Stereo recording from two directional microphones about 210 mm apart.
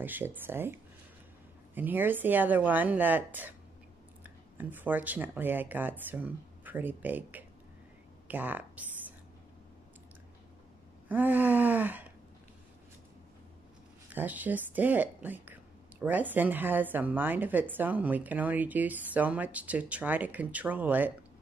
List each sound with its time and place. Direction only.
0.0 s speech: 10° right (ahead or behind)
1.8 s speech: 10° right (ahead or behind)
11.1 s speech: 10° right (ahead or behind)
14.1 s speech: 10° right (ahead or behind)